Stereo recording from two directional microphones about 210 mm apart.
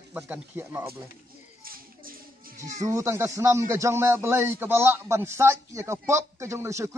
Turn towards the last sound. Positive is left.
turn(degrees=-15)  # may be behind; listen again after turning